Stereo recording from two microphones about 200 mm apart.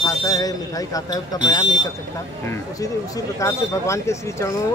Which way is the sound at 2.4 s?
10° left (ahead or behind).